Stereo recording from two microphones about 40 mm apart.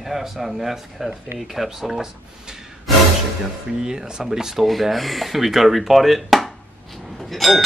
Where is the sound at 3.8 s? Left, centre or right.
Centre.